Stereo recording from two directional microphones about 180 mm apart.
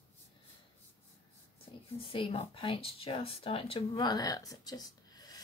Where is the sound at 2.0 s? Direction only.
30° left (ahead or behind).